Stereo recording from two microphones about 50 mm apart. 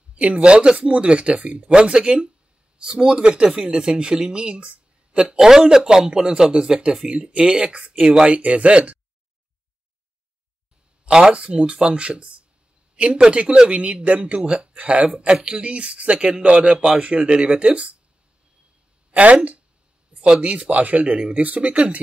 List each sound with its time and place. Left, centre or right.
0.1 s speech: right
8.4 s speech: right
11.1 s speech: centre
19.1 s speech: right